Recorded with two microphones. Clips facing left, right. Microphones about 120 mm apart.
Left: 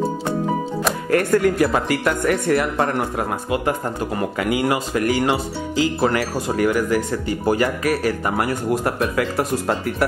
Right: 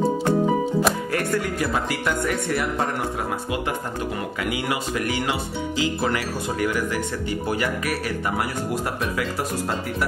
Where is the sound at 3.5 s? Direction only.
45° left (ahead or behind).